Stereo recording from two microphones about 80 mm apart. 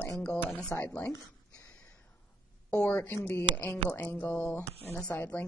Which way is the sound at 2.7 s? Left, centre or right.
Centre.